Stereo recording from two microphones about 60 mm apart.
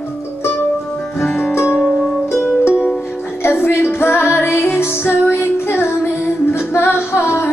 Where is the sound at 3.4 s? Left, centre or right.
Left.